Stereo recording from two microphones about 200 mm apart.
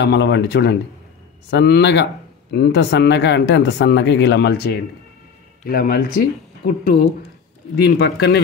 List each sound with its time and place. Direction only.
0.0 s speech: 60° left (ahead or behind)